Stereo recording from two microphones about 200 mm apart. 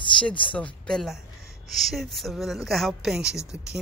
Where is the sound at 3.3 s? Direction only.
15° left (ahead or behind).